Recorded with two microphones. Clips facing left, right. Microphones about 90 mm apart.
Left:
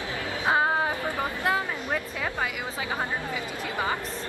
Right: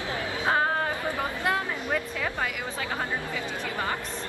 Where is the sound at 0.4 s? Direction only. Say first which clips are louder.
Left 2 dB; 10° left (ahead or behind).